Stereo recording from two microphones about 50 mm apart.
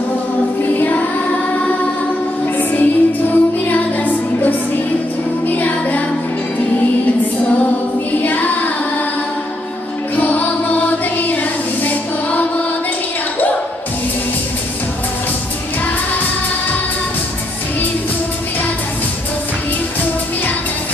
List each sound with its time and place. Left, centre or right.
0.7 s music: left
2.7 s music: left
8.2 s child singing: left
10.1 s music: left